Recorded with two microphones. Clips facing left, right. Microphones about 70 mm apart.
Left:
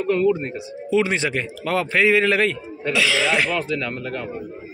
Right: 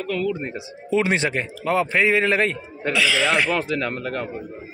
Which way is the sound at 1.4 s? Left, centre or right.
Right.